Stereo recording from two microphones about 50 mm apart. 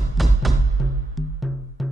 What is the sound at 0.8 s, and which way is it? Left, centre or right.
Music, centre.